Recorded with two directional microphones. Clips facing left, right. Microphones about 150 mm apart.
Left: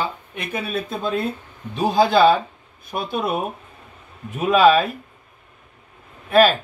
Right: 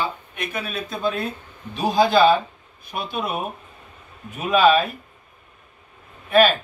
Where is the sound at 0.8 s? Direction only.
25° left (ahead or behind).